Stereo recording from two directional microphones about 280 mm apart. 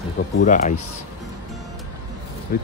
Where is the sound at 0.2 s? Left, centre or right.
Left.